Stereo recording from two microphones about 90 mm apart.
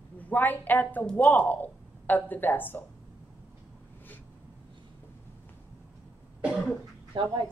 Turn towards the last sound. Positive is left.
turn(degrees=-65)  # may be behind; listen again after turning